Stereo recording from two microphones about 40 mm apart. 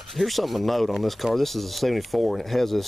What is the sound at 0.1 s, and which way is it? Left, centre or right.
Speech, centre.